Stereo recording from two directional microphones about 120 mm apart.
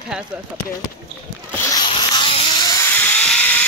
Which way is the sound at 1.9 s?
45° left (ahead or behind).